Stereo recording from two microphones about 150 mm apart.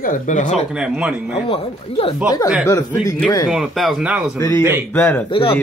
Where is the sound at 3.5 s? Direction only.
5° right (ahead or behind).